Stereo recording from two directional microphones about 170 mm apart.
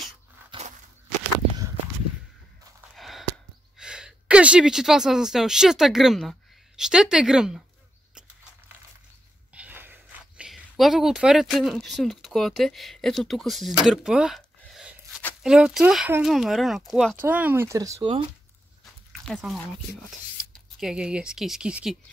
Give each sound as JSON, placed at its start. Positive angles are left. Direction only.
{"t": 0.5, "sound": "walk", "side_deg": -40}
{"t": 3.0, "sound": "a sound", "side_deg": 0}
{"t": 3.7, "sound": "a woman's voice", "side_deg": -5}
{"t": 9.5, "sound": "speech", "side_deg": -10}
{"t": 17.2, "sound": "speech", "side_deg": -10}
{"t": 19.2, "sound": "speech", "side_deg": 0}
{"t": 20.8, "sound": "speech", "side_deg": -5}